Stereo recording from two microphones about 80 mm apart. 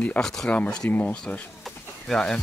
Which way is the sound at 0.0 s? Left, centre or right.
Centre.